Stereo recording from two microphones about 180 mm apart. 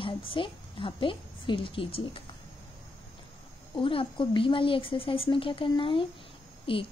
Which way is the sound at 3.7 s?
30° left (ahead or behind).